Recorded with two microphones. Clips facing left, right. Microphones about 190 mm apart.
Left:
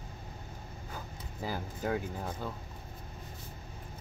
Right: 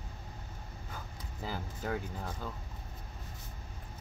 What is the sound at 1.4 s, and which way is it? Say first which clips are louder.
Speech: left 3 dB; 10° left (ahead or behind).